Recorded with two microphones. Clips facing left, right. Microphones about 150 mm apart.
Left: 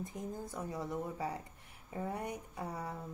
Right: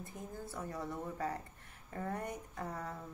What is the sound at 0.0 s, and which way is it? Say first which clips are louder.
Speech: left 4 dB; 20° left (ahead or behind).